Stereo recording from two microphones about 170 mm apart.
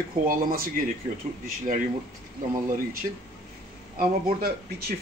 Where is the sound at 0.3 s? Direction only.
55° right (ahead or behind).